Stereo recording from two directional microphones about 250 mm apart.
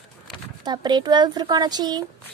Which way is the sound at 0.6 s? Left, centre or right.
Centre.